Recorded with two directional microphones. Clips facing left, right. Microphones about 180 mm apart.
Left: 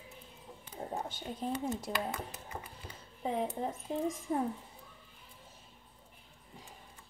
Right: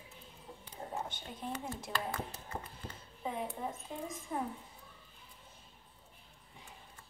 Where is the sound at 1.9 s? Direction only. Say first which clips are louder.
Even; 30° left (ahead or behind).